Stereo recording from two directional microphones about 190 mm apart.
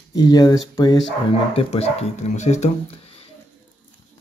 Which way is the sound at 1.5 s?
35° left (ahead or behind).